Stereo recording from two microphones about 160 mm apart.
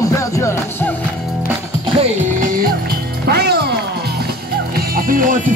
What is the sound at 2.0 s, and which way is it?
Music, 50° right (ahead or behind).